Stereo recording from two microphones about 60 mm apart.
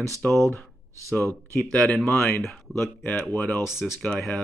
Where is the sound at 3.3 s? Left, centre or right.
Left.